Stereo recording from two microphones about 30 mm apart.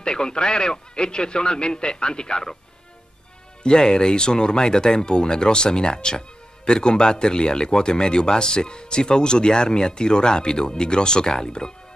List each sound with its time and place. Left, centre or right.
0.0 s speech: left
3.6 s speech: left